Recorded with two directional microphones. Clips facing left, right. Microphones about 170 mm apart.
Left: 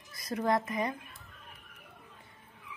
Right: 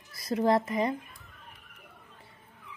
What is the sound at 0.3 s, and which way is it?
Speech, 30° right (ahead or behind).